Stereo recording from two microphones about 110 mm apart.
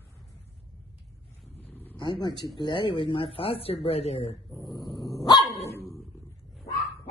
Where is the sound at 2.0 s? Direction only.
40° left (ahead or behind); by 4.4 s 70° left (ahead or behind).